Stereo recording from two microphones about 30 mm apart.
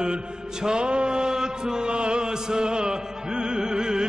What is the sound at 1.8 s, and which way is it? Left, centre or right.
Music, right.